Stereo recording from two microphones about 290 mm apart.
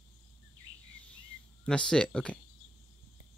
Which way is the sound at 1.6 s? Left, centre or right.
Centre.